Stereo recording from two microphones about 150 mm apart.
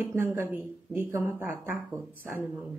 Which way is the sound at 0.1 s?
15° right (ahead or behind).